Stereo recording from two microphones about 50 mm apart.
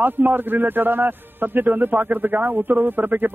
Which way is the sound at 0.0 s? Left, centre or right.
Right.